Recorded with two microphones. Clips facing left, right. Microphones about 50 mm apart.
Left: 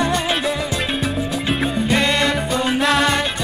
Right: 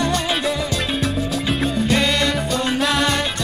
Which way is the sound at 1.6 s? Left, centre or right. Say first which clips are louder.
Even; centre.